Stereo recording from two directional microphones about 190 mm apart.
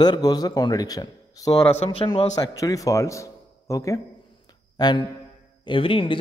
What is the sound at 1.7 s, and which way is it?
Speech, 30° left (ahead or behind).